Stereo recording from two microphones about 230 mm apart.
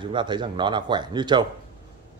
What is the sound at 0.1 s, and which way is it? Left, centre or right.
A man's voice, centre.